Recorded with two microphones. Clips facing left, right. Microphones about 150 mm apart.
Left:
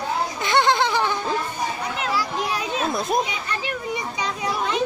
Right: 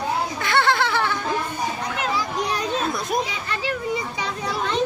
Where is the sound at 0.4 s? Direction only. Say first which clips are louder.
Left 2 dB; 20° left (ahead or behind).